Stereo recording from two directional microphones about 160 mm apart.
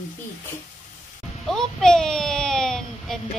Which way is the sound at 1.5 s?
5° left (ahead or behind).